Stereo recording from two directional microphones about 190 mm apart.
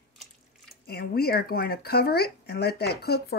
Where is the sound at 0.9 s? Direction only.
55° left (ahead or behind).